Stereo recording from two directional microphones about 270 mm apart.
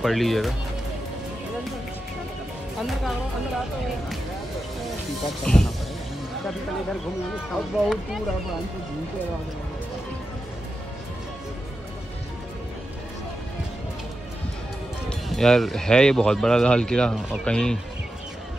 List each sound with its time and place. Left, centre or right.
0.0 s speech: centre
5.4 s speech: centre
15.0 s speech: centre